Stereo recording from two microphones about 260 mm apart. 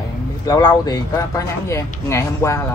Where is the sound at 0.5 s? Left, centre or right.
Centre.